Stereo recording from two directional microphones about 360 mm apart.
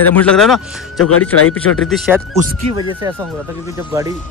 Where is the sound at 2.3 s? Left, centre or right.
Centre.